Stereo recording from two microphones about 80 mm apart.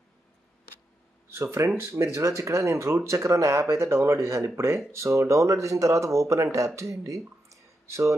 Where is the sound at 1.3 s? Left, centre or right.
Right.